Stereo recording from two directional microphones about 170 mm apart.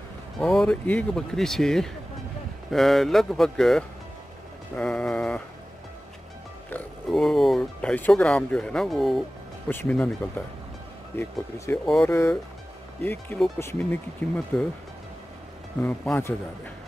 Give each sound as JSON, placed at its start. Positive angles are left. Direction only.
{"t": 0.4, "sound": "speech", "side_deg": 0}
{"t": 6.7, "sound": "speech", "side_deg": 0}
{"t": 11.1, "sound": "speech", "side_deg": 15}
{"t": 15.8, "sound": "speech", "side_deg": 10}